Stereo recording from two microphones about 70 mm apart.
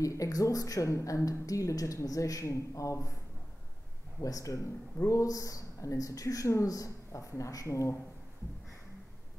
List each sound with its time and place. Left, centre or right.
0.0 s speech: left
4.2 s speech: left